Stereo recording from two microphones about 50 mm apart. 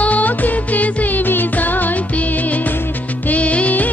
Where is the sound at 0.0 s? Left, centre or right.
Left.